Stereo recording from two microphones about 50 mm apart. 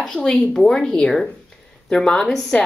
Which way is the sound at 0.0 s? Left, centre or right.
Centre.